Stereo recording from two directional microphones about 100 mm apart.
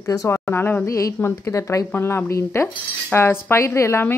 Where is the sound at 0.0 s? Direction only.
30° left (ahead or behind).